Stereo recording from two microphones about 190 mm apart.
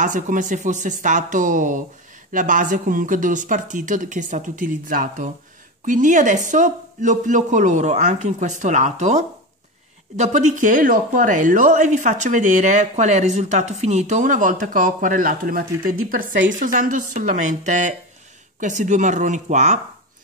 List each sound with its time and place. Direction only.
0.0 s speech: 40° right (ahead or behind)